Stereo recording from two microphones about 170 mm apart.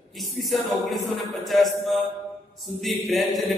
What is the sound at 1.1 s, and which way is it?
Mantra, centre (ahead or behind).